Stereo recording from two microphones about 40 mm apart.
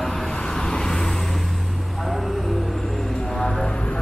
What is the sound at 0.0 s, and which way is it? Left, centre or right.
Vehicle, centre.